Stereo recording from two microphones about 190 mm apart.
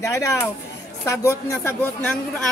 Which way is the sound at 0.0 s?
15° left (ahead or behind).